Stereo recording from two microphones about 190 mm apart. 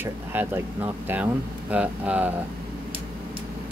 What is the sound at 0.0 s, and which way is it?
Speech, 10° right (ahead or behind).